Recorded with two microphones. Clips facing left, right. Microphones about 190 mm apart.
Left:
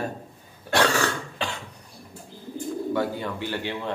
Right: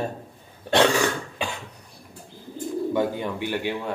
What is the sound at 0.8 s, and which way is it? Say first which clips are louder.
Cough: right 3 dB; 15° right (ahead or behind).